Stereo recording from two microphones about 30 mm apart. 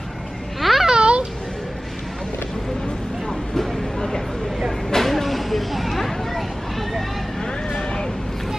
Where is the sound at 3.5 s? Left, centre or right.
Centre.